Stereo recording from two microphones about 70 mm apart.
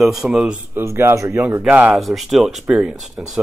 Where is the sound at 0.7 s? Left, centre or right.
Right.